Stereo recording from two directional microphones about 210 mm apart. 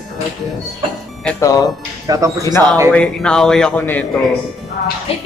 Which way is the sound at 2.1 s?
15° right (ahead or behind).